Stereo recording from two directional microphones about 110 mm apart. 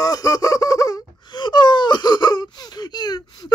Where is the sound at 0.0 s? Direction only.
35° left (ahead or behind).